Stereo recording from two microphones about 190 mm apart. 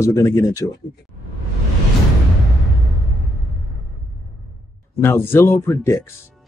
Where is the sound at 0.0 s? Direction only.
15° left (ahead or behind).